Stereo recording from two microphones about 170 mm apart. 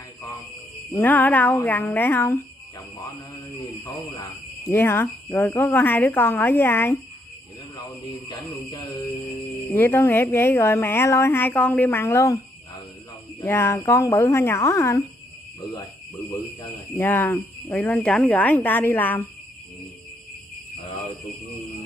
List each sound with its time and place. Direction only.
0.9 s speech: 10° left (ahead or behind)
3.5 s speech: 20° left (ahead or behind)
8.5 s speech: 20° left (ahead or behind)
16.4 s speech: 10° left (ahead or behind)